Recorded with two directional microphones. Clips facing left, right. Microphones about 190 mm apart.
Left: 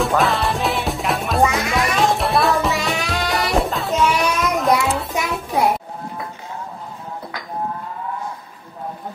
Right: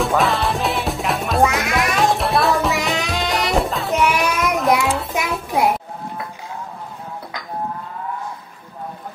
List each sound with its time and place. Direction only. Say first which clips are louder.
0.0 s music: even; centre (ahead or behind)
3.0 s music: even; 20° right (ahead or behind)
3.3 s music: even; centre (ahead or behind)